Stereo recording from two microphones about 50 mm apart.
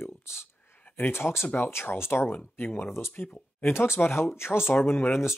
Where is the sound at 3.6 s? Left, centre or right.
Left.